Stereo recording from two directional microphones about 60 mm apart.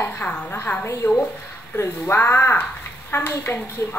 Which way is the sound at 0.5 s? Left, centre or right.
Left.